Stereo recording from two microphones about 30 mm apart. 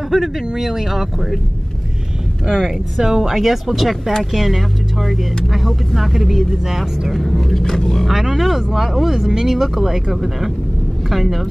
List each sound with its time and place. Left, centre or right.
0.1 s speech: centre
2.4 s speech: centre
6.7 s speech: centre
7.2 s speech: centre
8.1 s speech: centre
11.1 s speech: centre